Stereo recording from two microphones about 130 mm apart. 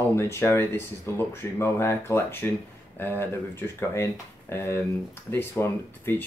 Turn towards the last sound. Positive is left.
turn(degrees=20)  # may be behind; listen again after turning